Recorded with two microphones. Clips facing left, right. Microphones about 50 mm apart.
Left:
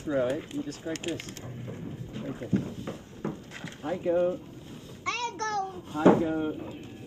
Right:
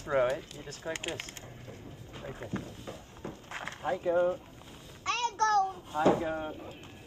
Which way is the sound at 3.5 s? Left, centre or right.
Right.